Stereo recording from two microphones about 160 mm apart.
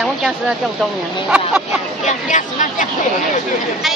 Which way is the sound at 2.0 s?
50° left (ahead or behind).